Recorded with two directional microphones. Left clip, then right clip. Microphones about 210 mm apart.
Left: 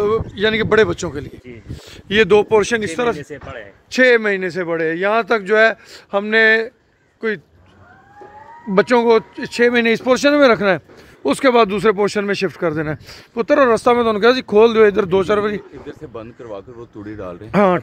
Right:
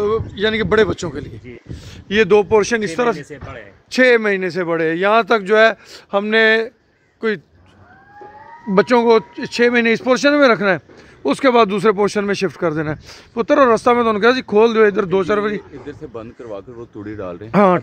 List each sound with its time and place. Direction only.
0.0 s speech: 10° left (ahead or behind); by 3.2 s 10° right (ahead or behind)
3.3 s speech: 25° left (ahead or behind)
3.9 s speech: 15° right (ahead or behind)
8.7 s speech: 10° right (ahead or behind)
16.1 s speech: 55° right (ahead or behind); by 17.5 s 35° right (ahead or behind)
17.5 s speech: 15° right (ahead or behind)